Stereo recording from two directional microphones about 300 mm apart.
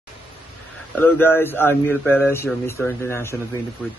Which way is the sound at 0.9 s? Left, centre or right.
Centre.